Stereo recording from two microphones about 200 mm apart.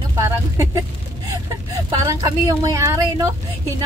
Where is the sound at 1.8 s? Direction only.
15° right (ahead or behind).